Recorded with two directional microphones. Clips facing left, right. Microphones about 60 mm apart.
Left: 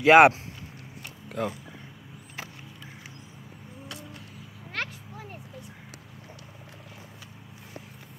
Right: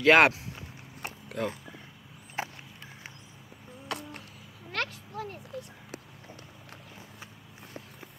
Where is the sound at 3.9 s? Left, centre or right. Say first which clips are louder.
Right 7 dB; right.